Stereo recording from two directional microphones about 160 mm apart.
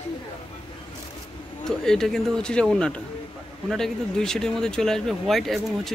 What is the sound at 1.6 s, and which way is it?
Speech, 5° left (ahead or behind).